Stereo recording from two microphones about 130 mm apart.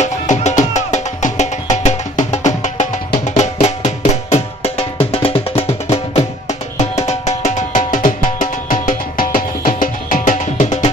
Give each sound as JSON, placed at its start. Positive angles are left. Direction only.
{"t": 0.0, "sound": "music", "side_deg": 65}
{"t": 6.8, "sound": "music", "side_deg": 60}